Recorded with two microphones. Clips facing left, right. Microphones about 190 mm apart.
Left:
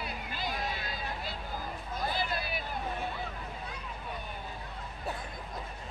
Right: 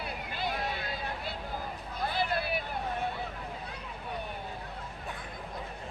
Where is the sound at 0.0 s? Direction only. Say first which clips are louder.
Right 2 dB; 60° right (ahead or behind).